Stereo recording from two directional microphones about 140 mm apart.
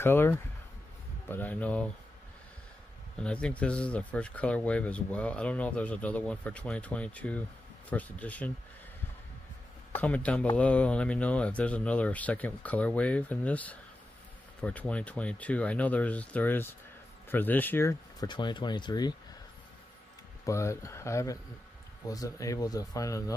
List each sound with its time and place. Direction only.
0.0 s speech: 15° left (ahead or behind)
3.2 s speech: 5° left (ahead or behind)
9.9 s speech: 10° left (ahead or behind)
18.2 s speech: 30° left (ahead or behind)
20.4 s speech: 20° left (ahead or behind)